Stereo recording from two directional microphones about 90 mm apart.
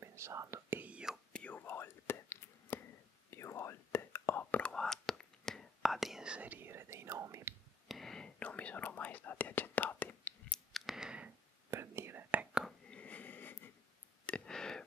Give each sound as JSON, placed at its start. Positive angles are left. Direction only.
{"t": 0.0, "sound": "whispering", "side_deg": -30}
{"t": 0.7, "sound": "whispering", "side_deg": -15}
{"t": 1.3, "sound": "whispering", "side_deg": 15}
{"t": 1.6, "sound": "whispering", "side_deg": 25}
{"t": 7.9, "sound": "whispering", "side_deg": 5}
{"t": 8.4, "sound": "whispering", "side_deg": 15}
{"t": 10.5, "sound": "clicking", "side_deg": 0}
{"t": 11.7, "sound": "whispering", "side_deg": -30}
{"t": 12.9, "sound": "wheeze", "side_deg": 15}
{"t": 14.2, "sound": "a sound", "side_deg": 10}